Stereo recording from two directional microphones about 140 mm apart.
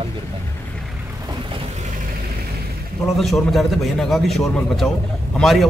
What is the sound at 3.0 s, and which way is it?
A man's voice, centre (ahead or behind).